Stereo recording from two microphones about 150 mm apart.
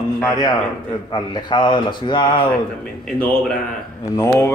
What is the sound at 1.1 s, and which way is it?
Speech, 30° left (ahead or behind).